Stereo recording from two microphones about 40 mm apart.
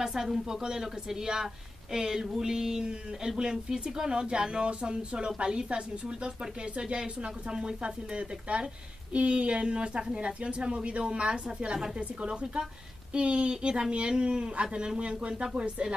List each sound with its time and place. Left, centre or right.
0.0 s a woman's voice: centre; by 15.9 s right